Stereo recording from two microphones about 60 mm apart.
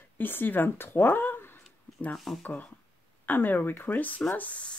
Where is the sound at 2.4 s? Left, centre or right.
Left.